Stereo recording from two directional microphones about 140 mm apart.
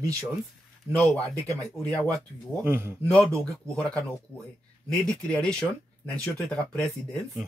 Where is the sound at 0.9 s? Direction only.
10° left (ahead or behind).